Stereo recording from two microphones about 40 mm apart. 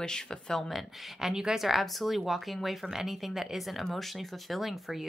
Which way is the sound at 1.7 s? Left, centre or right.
Centre.